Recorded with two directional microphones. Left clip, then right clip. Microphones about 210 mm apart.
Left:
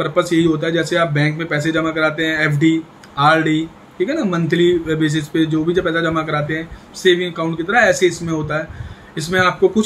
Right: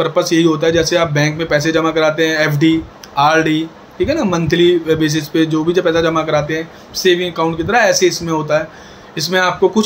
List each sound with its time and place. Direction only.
0.0 s a man's voice: 15° left (ahead or behind)